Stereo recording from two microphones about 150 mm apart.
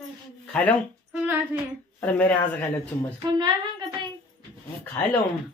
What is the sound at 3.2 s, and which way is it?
Speech, 30° right (ahead or behind).